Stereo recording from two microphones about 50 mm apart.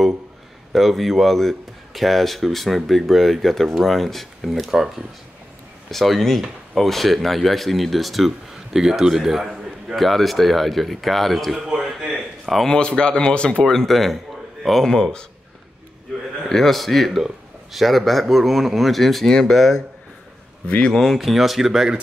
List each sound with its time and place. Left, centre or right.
0.7 s speech: centre
4.6 s speech: centre
5.9 s speech: centre
11.5 s a sound: centre
12.6 s speech: centre
13.7 s a man's voice: centre
16.4 s speech: centre
20.6 s speech: left
20.9 s speech: centre